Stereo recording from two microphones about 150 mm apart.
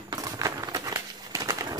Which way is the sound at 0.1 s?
25° right (ahead or behind).